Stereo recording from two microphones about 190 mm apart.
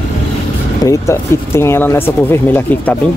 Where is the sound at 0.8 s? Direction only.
15° left (ahead or behind).